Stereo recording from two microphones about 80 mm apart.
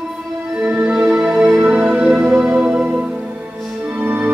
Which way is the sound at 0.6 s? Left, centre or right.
Centre.